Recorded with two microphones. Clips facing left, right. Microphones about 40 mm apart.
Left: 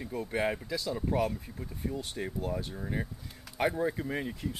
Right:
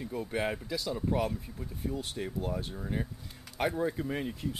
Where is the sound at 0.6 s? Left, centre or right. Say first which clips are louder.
Even; centre.